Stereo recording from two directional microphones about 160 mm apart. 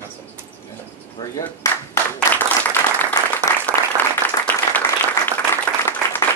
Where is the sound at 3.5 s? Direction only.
20° left (ahead or behind).